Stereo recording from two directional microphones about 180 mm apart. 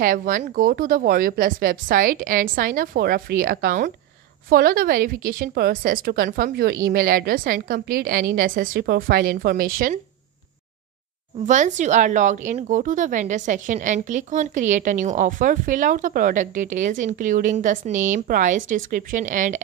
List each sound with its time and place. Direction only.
0.0 s a woman's voice: 50° right (ahead or behind)
11.4 s a woman's voice: 40° right (ahead or behind)